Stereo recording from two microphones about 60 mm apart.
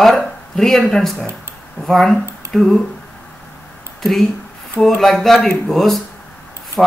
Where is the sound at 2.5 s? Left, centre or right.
Centre.